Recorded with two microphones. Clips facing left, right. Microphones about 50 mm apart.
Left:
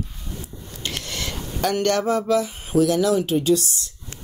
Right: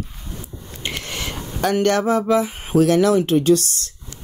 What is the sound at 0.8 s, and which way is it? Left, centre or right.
A woman's voice, right.